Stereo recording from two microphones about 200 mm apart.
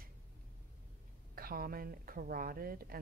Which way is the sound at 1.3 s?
45° right (ahead or behind).